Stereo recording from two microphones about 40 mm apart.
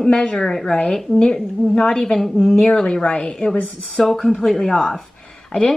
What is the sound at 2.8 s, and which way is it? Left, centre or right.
Speech, left.